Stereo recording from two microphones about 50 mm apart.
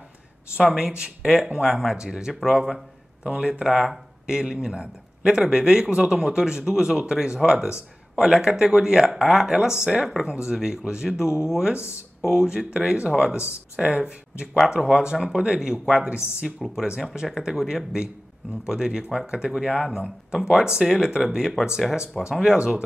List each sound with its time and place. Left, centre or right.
0.6 s speech: centre
3.3 s speech: centre
3.6 s speech: centre